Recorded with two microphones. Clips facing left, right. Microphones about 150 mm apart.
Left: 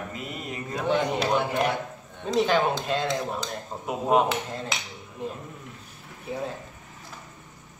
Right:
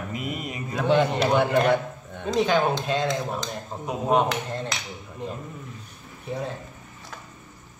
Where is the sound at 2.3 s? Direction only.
Centre (ahead or behind).